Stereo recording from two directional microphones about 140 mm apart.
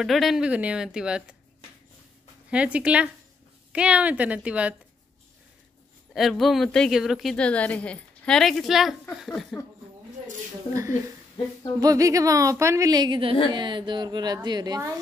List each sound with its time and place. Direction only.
0.0 s speech: centre (ahead or behind)
2.5 s a woman's voice: 10° right (ahead or behind)
6.1 s speech: centre (ahead or behind)
10.7 s a woman's voice: 25° right (ahead or behind)